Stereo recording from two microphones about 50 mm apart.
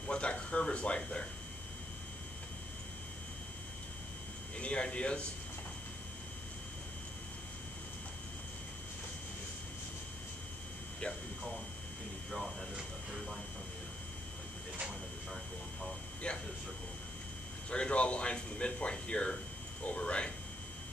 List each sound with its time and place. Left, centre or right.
0.0 s speech: left
4.6 s speech: left
12.3 s speech: centre
16.3 s speech: centre
17.6 s speech: left
20.0 s a sound: left